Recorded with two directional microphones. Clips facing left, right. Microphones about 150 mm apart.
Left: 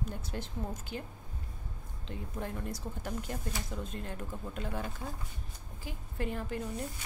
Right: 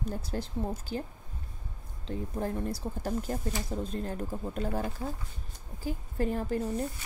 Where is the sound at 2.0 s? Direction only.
35° right (ahead or behind).